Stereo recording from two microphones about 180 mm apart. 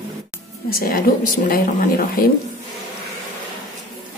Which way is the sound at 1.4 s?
55° left (ahead or behind).